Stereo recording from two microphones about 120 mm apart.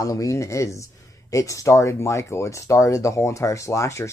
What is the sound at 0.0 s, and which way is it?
Speech, 25° left (ahead or behind).